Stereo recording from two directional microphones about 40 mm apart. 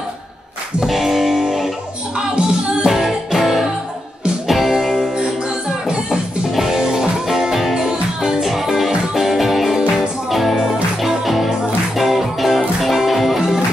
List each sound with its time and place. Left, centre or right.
0.8 s music: centre
2.1 s music: right
2.9 s music: centre
6.5 s music: centre
8.5 s music: centre